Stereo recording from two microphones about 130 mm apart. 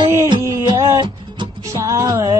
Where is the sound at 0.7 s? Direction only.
25° right (ahead or behind).